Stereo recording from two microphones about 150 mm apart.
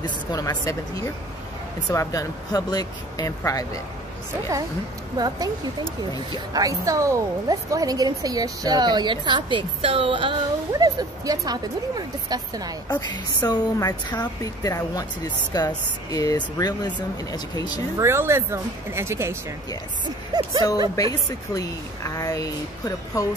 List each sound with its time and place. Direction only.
0.0 s speech: 25° left (ahead or behind)
5.1 s a woman's voice: 25° right (ahead or behind)
12.8 s speech: 30° left (ahead or behind)
17.9 s speech: 15° right (ahead or behind)
20.3 s a sound: 25° right (ahead or behind)
20.9 s speech: 25° left (ahead or behind)